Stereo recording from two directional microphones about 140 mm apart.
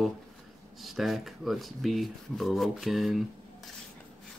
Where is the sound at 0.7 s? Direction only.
Centre (ahead or behind).